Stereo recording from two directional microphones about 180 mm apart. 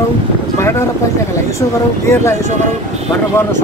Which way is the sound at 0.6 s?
15° left (ahead or behind).